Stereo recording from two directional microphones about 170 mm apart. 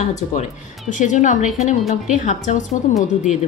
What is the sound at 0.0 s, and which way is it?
Speech, 40° left (ahead or behind).